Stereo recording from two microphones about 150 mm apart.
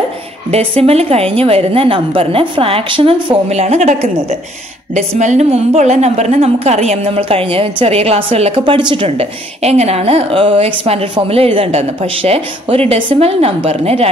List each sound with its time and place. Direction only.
0.5 s a woman's voice: 40° right (ahead or behind)